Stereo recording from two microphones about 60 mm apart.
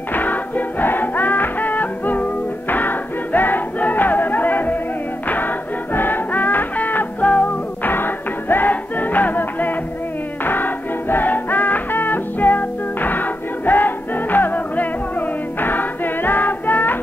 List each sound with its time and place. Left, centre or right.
0.1 s music: left
5.9 s music: left